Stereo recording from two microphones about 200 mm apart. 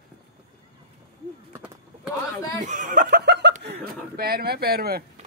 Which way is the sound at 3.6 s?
50° right (ahead or behind).